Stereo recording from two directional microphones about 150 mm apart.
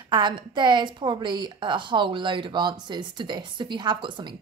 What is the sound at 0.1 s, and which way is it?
A woman's voice, 30° right (ahead or behind).